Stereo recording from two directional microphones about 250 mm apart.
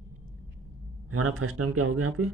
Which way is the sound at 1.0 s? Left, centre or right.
Right.